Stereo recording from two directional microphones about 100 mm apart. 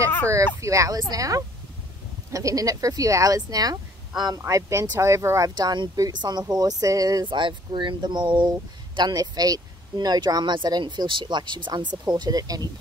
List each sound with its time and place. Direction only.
0.6 s speech: 35° right (ahead or behind)
5.6 s speech: 50° right (ahead or behind)
7.2 s speech: 55° right (ahead or behind)